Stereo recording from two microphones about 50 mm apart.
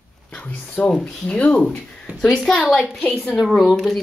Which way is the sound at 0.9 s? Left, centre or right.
Centre.